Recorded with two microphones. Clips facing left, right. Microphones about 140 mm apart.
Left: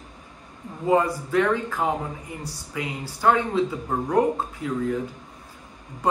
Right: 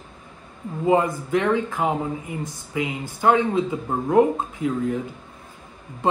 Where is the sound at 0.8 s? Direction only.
20° right (ahead or behind).